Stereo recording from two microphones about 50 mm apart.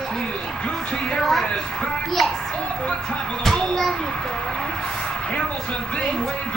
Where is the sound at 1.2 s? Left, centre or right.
Centre.